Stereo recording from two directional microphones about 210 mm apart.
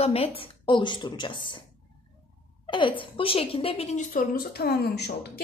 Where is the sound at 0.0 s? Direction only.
30° left (ahead or behind).